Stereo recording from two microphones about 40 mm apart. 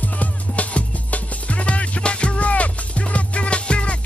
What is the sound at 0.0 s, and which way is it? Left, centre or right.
Music, left.